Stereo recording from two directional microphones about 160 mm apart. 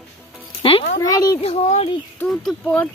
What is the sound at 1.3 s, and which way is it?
Speech, 40° left (ahead or behind).